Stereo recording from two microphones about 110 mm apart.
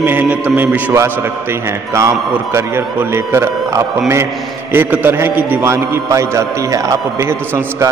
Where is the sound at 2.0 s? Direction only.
25° right (ahead or behind).